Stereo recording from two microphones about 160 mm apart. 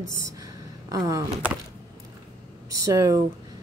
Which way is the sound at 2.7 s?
20° right (ahead or behind).